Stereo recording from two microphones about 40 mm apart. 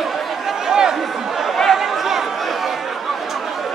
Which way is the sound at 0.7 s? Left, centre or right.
Centre.